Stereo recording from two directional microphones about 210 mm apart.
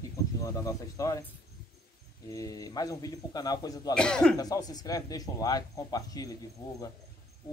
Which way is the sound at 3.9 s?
5° left (ahead or behind).